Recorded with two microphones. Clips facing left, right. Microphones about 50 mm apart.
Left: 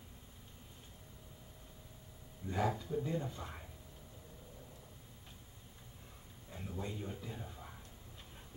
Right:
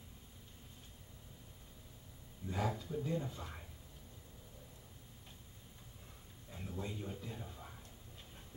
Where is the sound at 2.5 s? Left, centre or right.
Centre.